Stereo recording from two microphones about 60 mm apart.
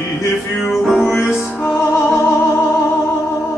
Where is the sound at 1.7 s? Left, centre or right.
Left.